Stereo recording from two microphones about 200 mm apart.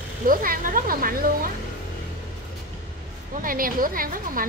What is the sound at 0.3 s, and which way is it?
Speech, 45° right (ahead or behind).